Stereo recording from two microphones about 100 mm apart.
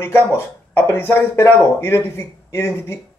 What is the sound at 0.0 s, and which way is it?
Speech, 25° left (ahead or behind).